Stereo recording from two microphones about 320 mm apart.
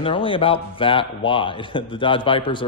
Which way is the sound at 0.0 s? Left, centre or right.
Centre.